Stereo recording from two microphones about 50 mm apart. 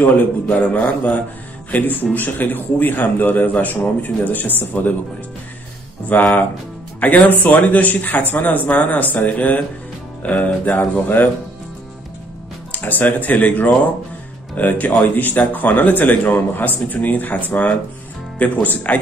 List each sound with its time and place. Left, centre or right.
0.0 s a man's voice: left
6.0 s a man's voice: left
10.8 s speech: left
12.7 s a man's voice: left